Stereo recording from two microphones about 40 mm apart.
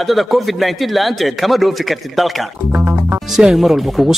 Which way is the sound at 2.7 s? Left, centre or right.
Right.